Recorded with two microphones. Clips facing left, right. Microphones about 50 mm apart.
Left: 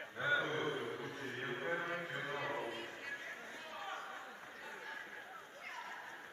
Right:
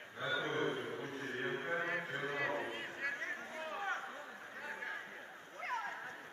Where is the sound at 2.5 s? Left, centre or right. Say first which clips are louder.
Right 2 dB; right.